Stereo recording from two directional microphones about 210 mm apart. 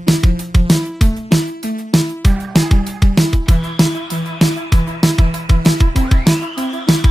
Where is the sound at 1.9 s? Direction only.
Centre (ahead or behind).